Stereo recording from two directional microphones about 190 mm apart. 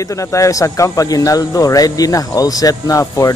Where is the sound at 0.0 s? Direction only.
15° left (ahead or behind).